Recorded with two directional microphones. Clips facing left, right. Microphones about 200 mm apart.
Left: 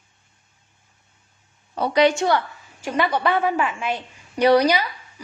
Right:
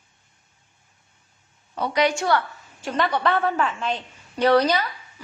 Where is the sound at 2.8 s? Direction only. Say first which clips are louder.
Left 2 dB; 10° left (ahead or behind).